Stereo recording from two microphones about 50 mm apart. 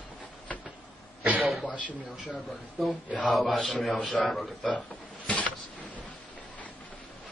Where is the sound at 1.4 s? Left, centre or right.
Centre.